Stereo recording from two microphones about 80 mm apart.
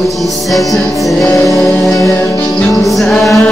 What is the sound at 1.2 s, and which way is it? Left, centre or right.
Music, left.